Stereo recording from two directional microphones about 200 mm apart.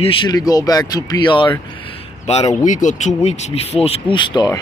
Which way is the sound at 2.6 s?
40° left (ahead or behind).